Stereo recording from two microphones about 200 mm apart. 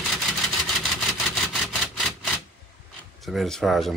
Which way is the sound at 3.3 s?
Centre (ahead or behind).